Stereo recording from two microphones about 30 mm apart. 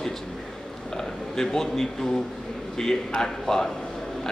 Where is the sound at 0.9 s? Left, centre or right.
Centre.